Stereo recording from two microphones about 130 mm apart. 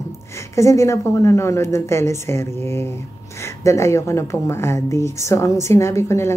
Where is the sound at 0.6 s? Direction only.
20° left (ahead or behind).